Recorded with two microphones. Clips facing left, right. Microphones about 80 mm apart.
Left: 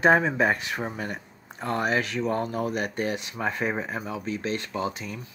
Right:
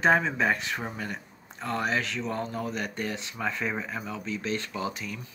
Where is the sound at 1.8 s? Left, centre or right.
Left.